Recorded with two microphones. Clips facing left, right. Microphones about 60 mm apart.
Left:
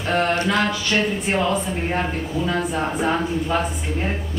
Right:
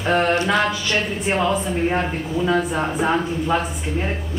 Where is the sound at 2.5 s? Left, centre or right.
Centre.